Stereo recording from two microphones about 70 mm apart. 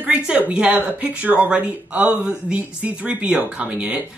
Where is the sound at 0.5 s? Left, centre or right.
Centre.